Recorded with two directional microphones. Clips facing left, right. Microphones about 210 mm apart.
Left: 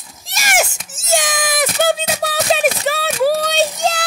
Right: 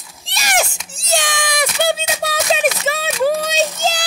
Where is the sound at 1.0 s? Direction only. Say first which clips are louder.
Left 2 dB; 20° left (ahead or behind).